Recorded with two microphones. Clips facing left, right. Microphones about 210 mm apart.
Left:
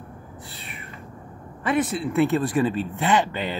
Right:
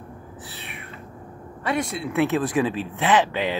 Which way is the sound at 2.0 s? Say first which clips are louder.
Right 2 dB; centre (ahead or behind).